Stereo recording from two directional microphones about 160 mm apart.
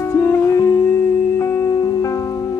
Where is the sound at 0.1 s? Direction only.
20° left (ahead or behind).